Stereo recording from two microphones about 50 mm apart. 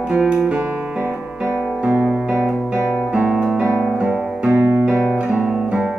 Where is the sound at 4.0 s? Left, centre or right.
Centre.